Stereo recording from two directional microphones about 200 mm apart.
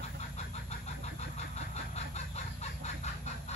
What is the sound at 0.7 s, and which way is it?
Vehicle, 35° left (ahead or behind).